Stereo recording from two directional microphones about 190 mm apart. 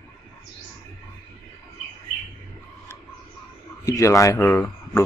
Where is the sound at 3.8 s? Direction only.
15° left (ahead or behind).